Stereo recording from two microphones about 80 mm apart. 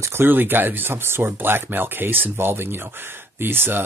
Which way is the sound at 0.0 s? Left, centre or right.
Right.